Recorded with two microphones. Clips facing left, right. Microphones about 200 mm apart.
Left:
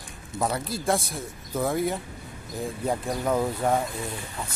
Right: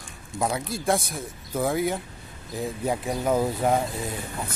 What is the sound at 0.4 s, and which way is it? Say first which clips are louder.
Speech: right 1 dB; centre (ahead or behind).